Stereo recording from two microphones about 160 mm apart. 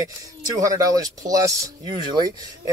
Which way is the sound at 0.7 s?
20° right (ahead or behind).